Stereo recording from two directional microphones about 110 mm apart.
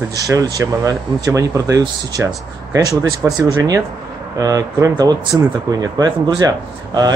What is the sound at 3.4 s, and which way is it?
Speech, 30° right (ahead or behind).